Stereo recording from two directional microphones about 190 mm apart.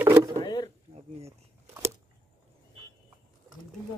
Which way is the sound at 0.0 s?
15° right (ahead or behind).